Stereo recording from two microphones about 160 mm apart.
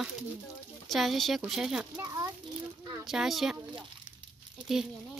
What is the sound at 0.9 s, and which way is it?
Speech, centre (ahead or behind).